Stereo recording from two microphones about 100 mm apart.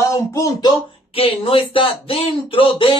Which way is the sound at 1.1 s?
65° left (ahead or behind).